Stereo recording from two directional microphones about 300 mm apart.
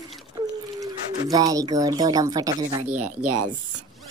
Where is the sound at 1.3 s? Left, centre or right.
Centre.